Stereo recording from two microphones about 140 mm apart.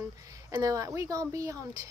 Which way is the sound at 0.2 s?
25° right (ahead or behind).